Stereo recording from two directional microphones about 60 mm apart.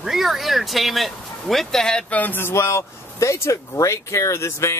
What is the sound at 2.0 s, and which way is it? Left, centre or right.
Speech, left.